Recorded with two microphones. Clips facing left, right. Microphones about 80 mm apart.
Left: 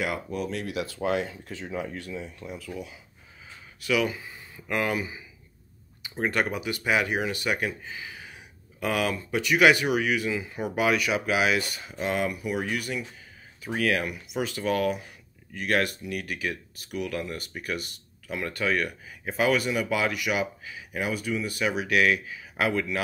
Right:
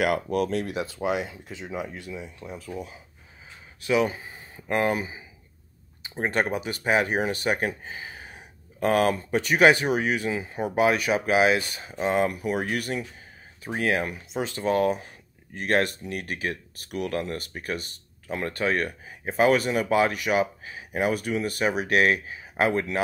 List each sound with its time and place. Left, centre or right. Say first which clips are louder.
0.0 s speech: right 6 dB; right
0.5 s speech: right 4 dB; right
1.0 s speech: left 1 dB; centre
2.5 s speech: right 3 dB; right
13.6 s speech: right 1 dB; right